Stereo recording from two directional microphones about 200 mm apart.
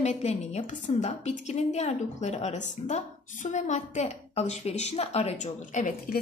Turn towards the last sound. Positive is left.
turn(degrees=40)  # may be behind; listen again after turning